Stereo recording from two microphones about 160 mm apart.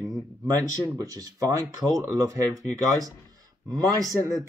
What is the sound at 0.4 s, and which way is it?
Speech, 20° right (ahead or behind).